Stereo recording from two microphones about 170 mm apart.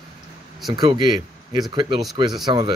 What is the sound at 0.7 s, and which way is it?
Speech, 25° right (ahead or behind).